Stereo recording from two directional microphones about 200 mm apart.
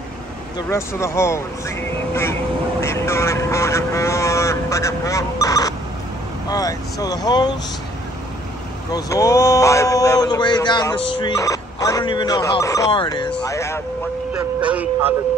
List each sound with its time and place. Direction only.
0.6 s a man's voice: 15° left (ahead or behind)
8.9 s a man's voice: 15° left (ahead or behind)
14.3 s speech: 5° right (ahead or behind)